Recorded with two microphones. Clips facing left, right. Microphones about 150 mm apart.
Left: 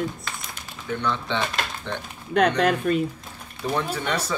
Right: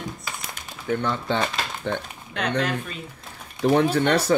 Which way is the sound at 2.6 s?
55° left (ahead or behind).